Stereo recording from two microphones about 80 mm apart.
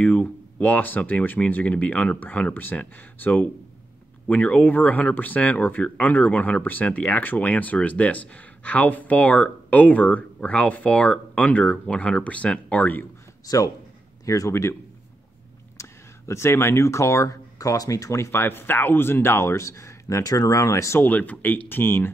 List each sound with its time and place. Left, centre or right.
0.0 s speech: left
13.5 s a man's voice: left
14.5 s speech: left
15.8 s speech: left
21.0 s speech: left